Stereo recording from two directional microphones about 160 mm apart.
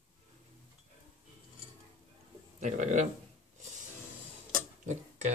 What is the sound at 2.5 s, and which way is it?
Speech, 50° right (ahead or behind).